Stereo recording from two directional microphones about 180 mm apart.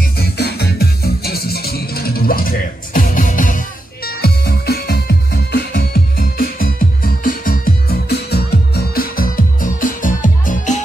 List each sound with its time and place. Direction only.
0.2 s music: 65° left (ahead or behind); by 10.8 s 45° left (ahead or behind)